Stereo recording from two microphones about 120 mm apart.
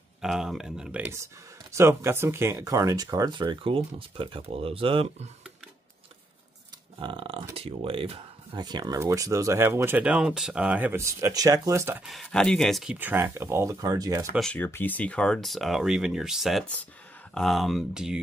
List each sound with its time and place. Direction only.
0.2 s speech: 5° right (ahead or behind)
1.1 s speech: 25° right (ahead or behind); by 5.3 s 50° right (ahead or behind)
7.0 s a sound: 45° right (ahead or behind)
7.5 s speech: 50° right (ahead or behind)
8.5 s speech: 35° right (ahead or behind)
12.1 s speech: 5° left (ahead or behind)
12.9 s speech: 15° right (ahead or behind)
14.4 s speech: 15° left (ahead or behind); by 18.2 s 5° right (ahead or behind)